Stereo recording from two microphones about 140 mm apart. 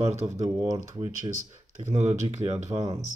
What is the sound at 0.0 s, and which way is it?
Speech, 50° right (ahead or behind).